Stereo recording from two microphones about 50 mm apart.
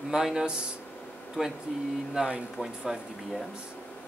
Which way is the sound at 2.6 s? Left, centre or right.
Centre.